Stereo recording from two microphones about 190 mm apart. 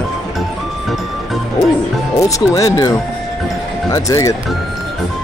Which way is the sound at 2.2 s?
15° left (ahead or behind).